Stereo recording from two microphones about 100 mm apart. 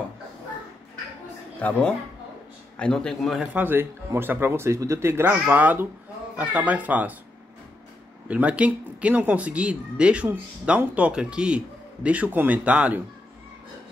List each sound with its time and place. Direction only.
1.6 s a man's voice: 15° left (ahead or behind)
3.5 s speech: 20° right (ahead or behind)
8.3 s speech: 15° right (ahead or behind)